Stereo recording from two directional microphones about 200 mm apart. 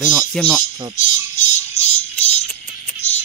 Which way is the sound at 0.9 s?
35° left (ahead or behind).